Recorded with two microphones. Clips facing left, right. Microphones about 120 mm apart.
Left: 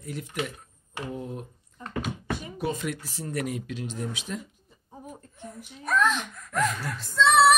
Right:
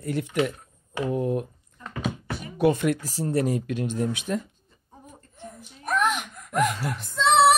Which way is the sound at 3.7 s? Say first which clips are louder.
Right 7 dB; 55° right (ahead or behind).